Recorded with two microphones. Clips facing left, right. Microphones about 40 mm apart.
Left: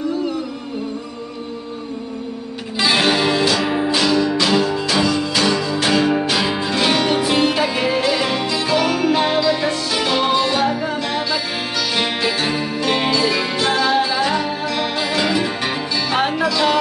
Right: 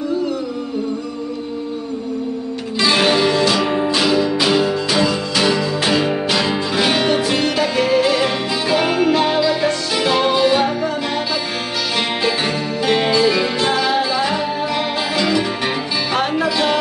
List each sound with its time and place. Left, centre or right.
2.8 s music: centre
7.2 s music: centre
8.0 s music: centre
9.1 s music: centre
12.2 s music: centre